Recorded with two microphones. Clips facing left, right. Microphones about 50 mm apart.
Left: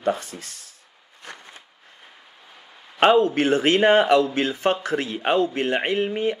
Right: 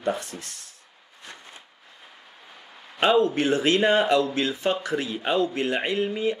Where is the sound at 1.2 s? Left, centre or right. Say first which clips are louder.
Left 3 dB; left.